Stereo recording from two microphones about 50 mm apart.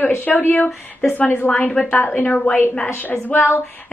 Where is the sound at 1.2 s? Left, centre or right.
Left.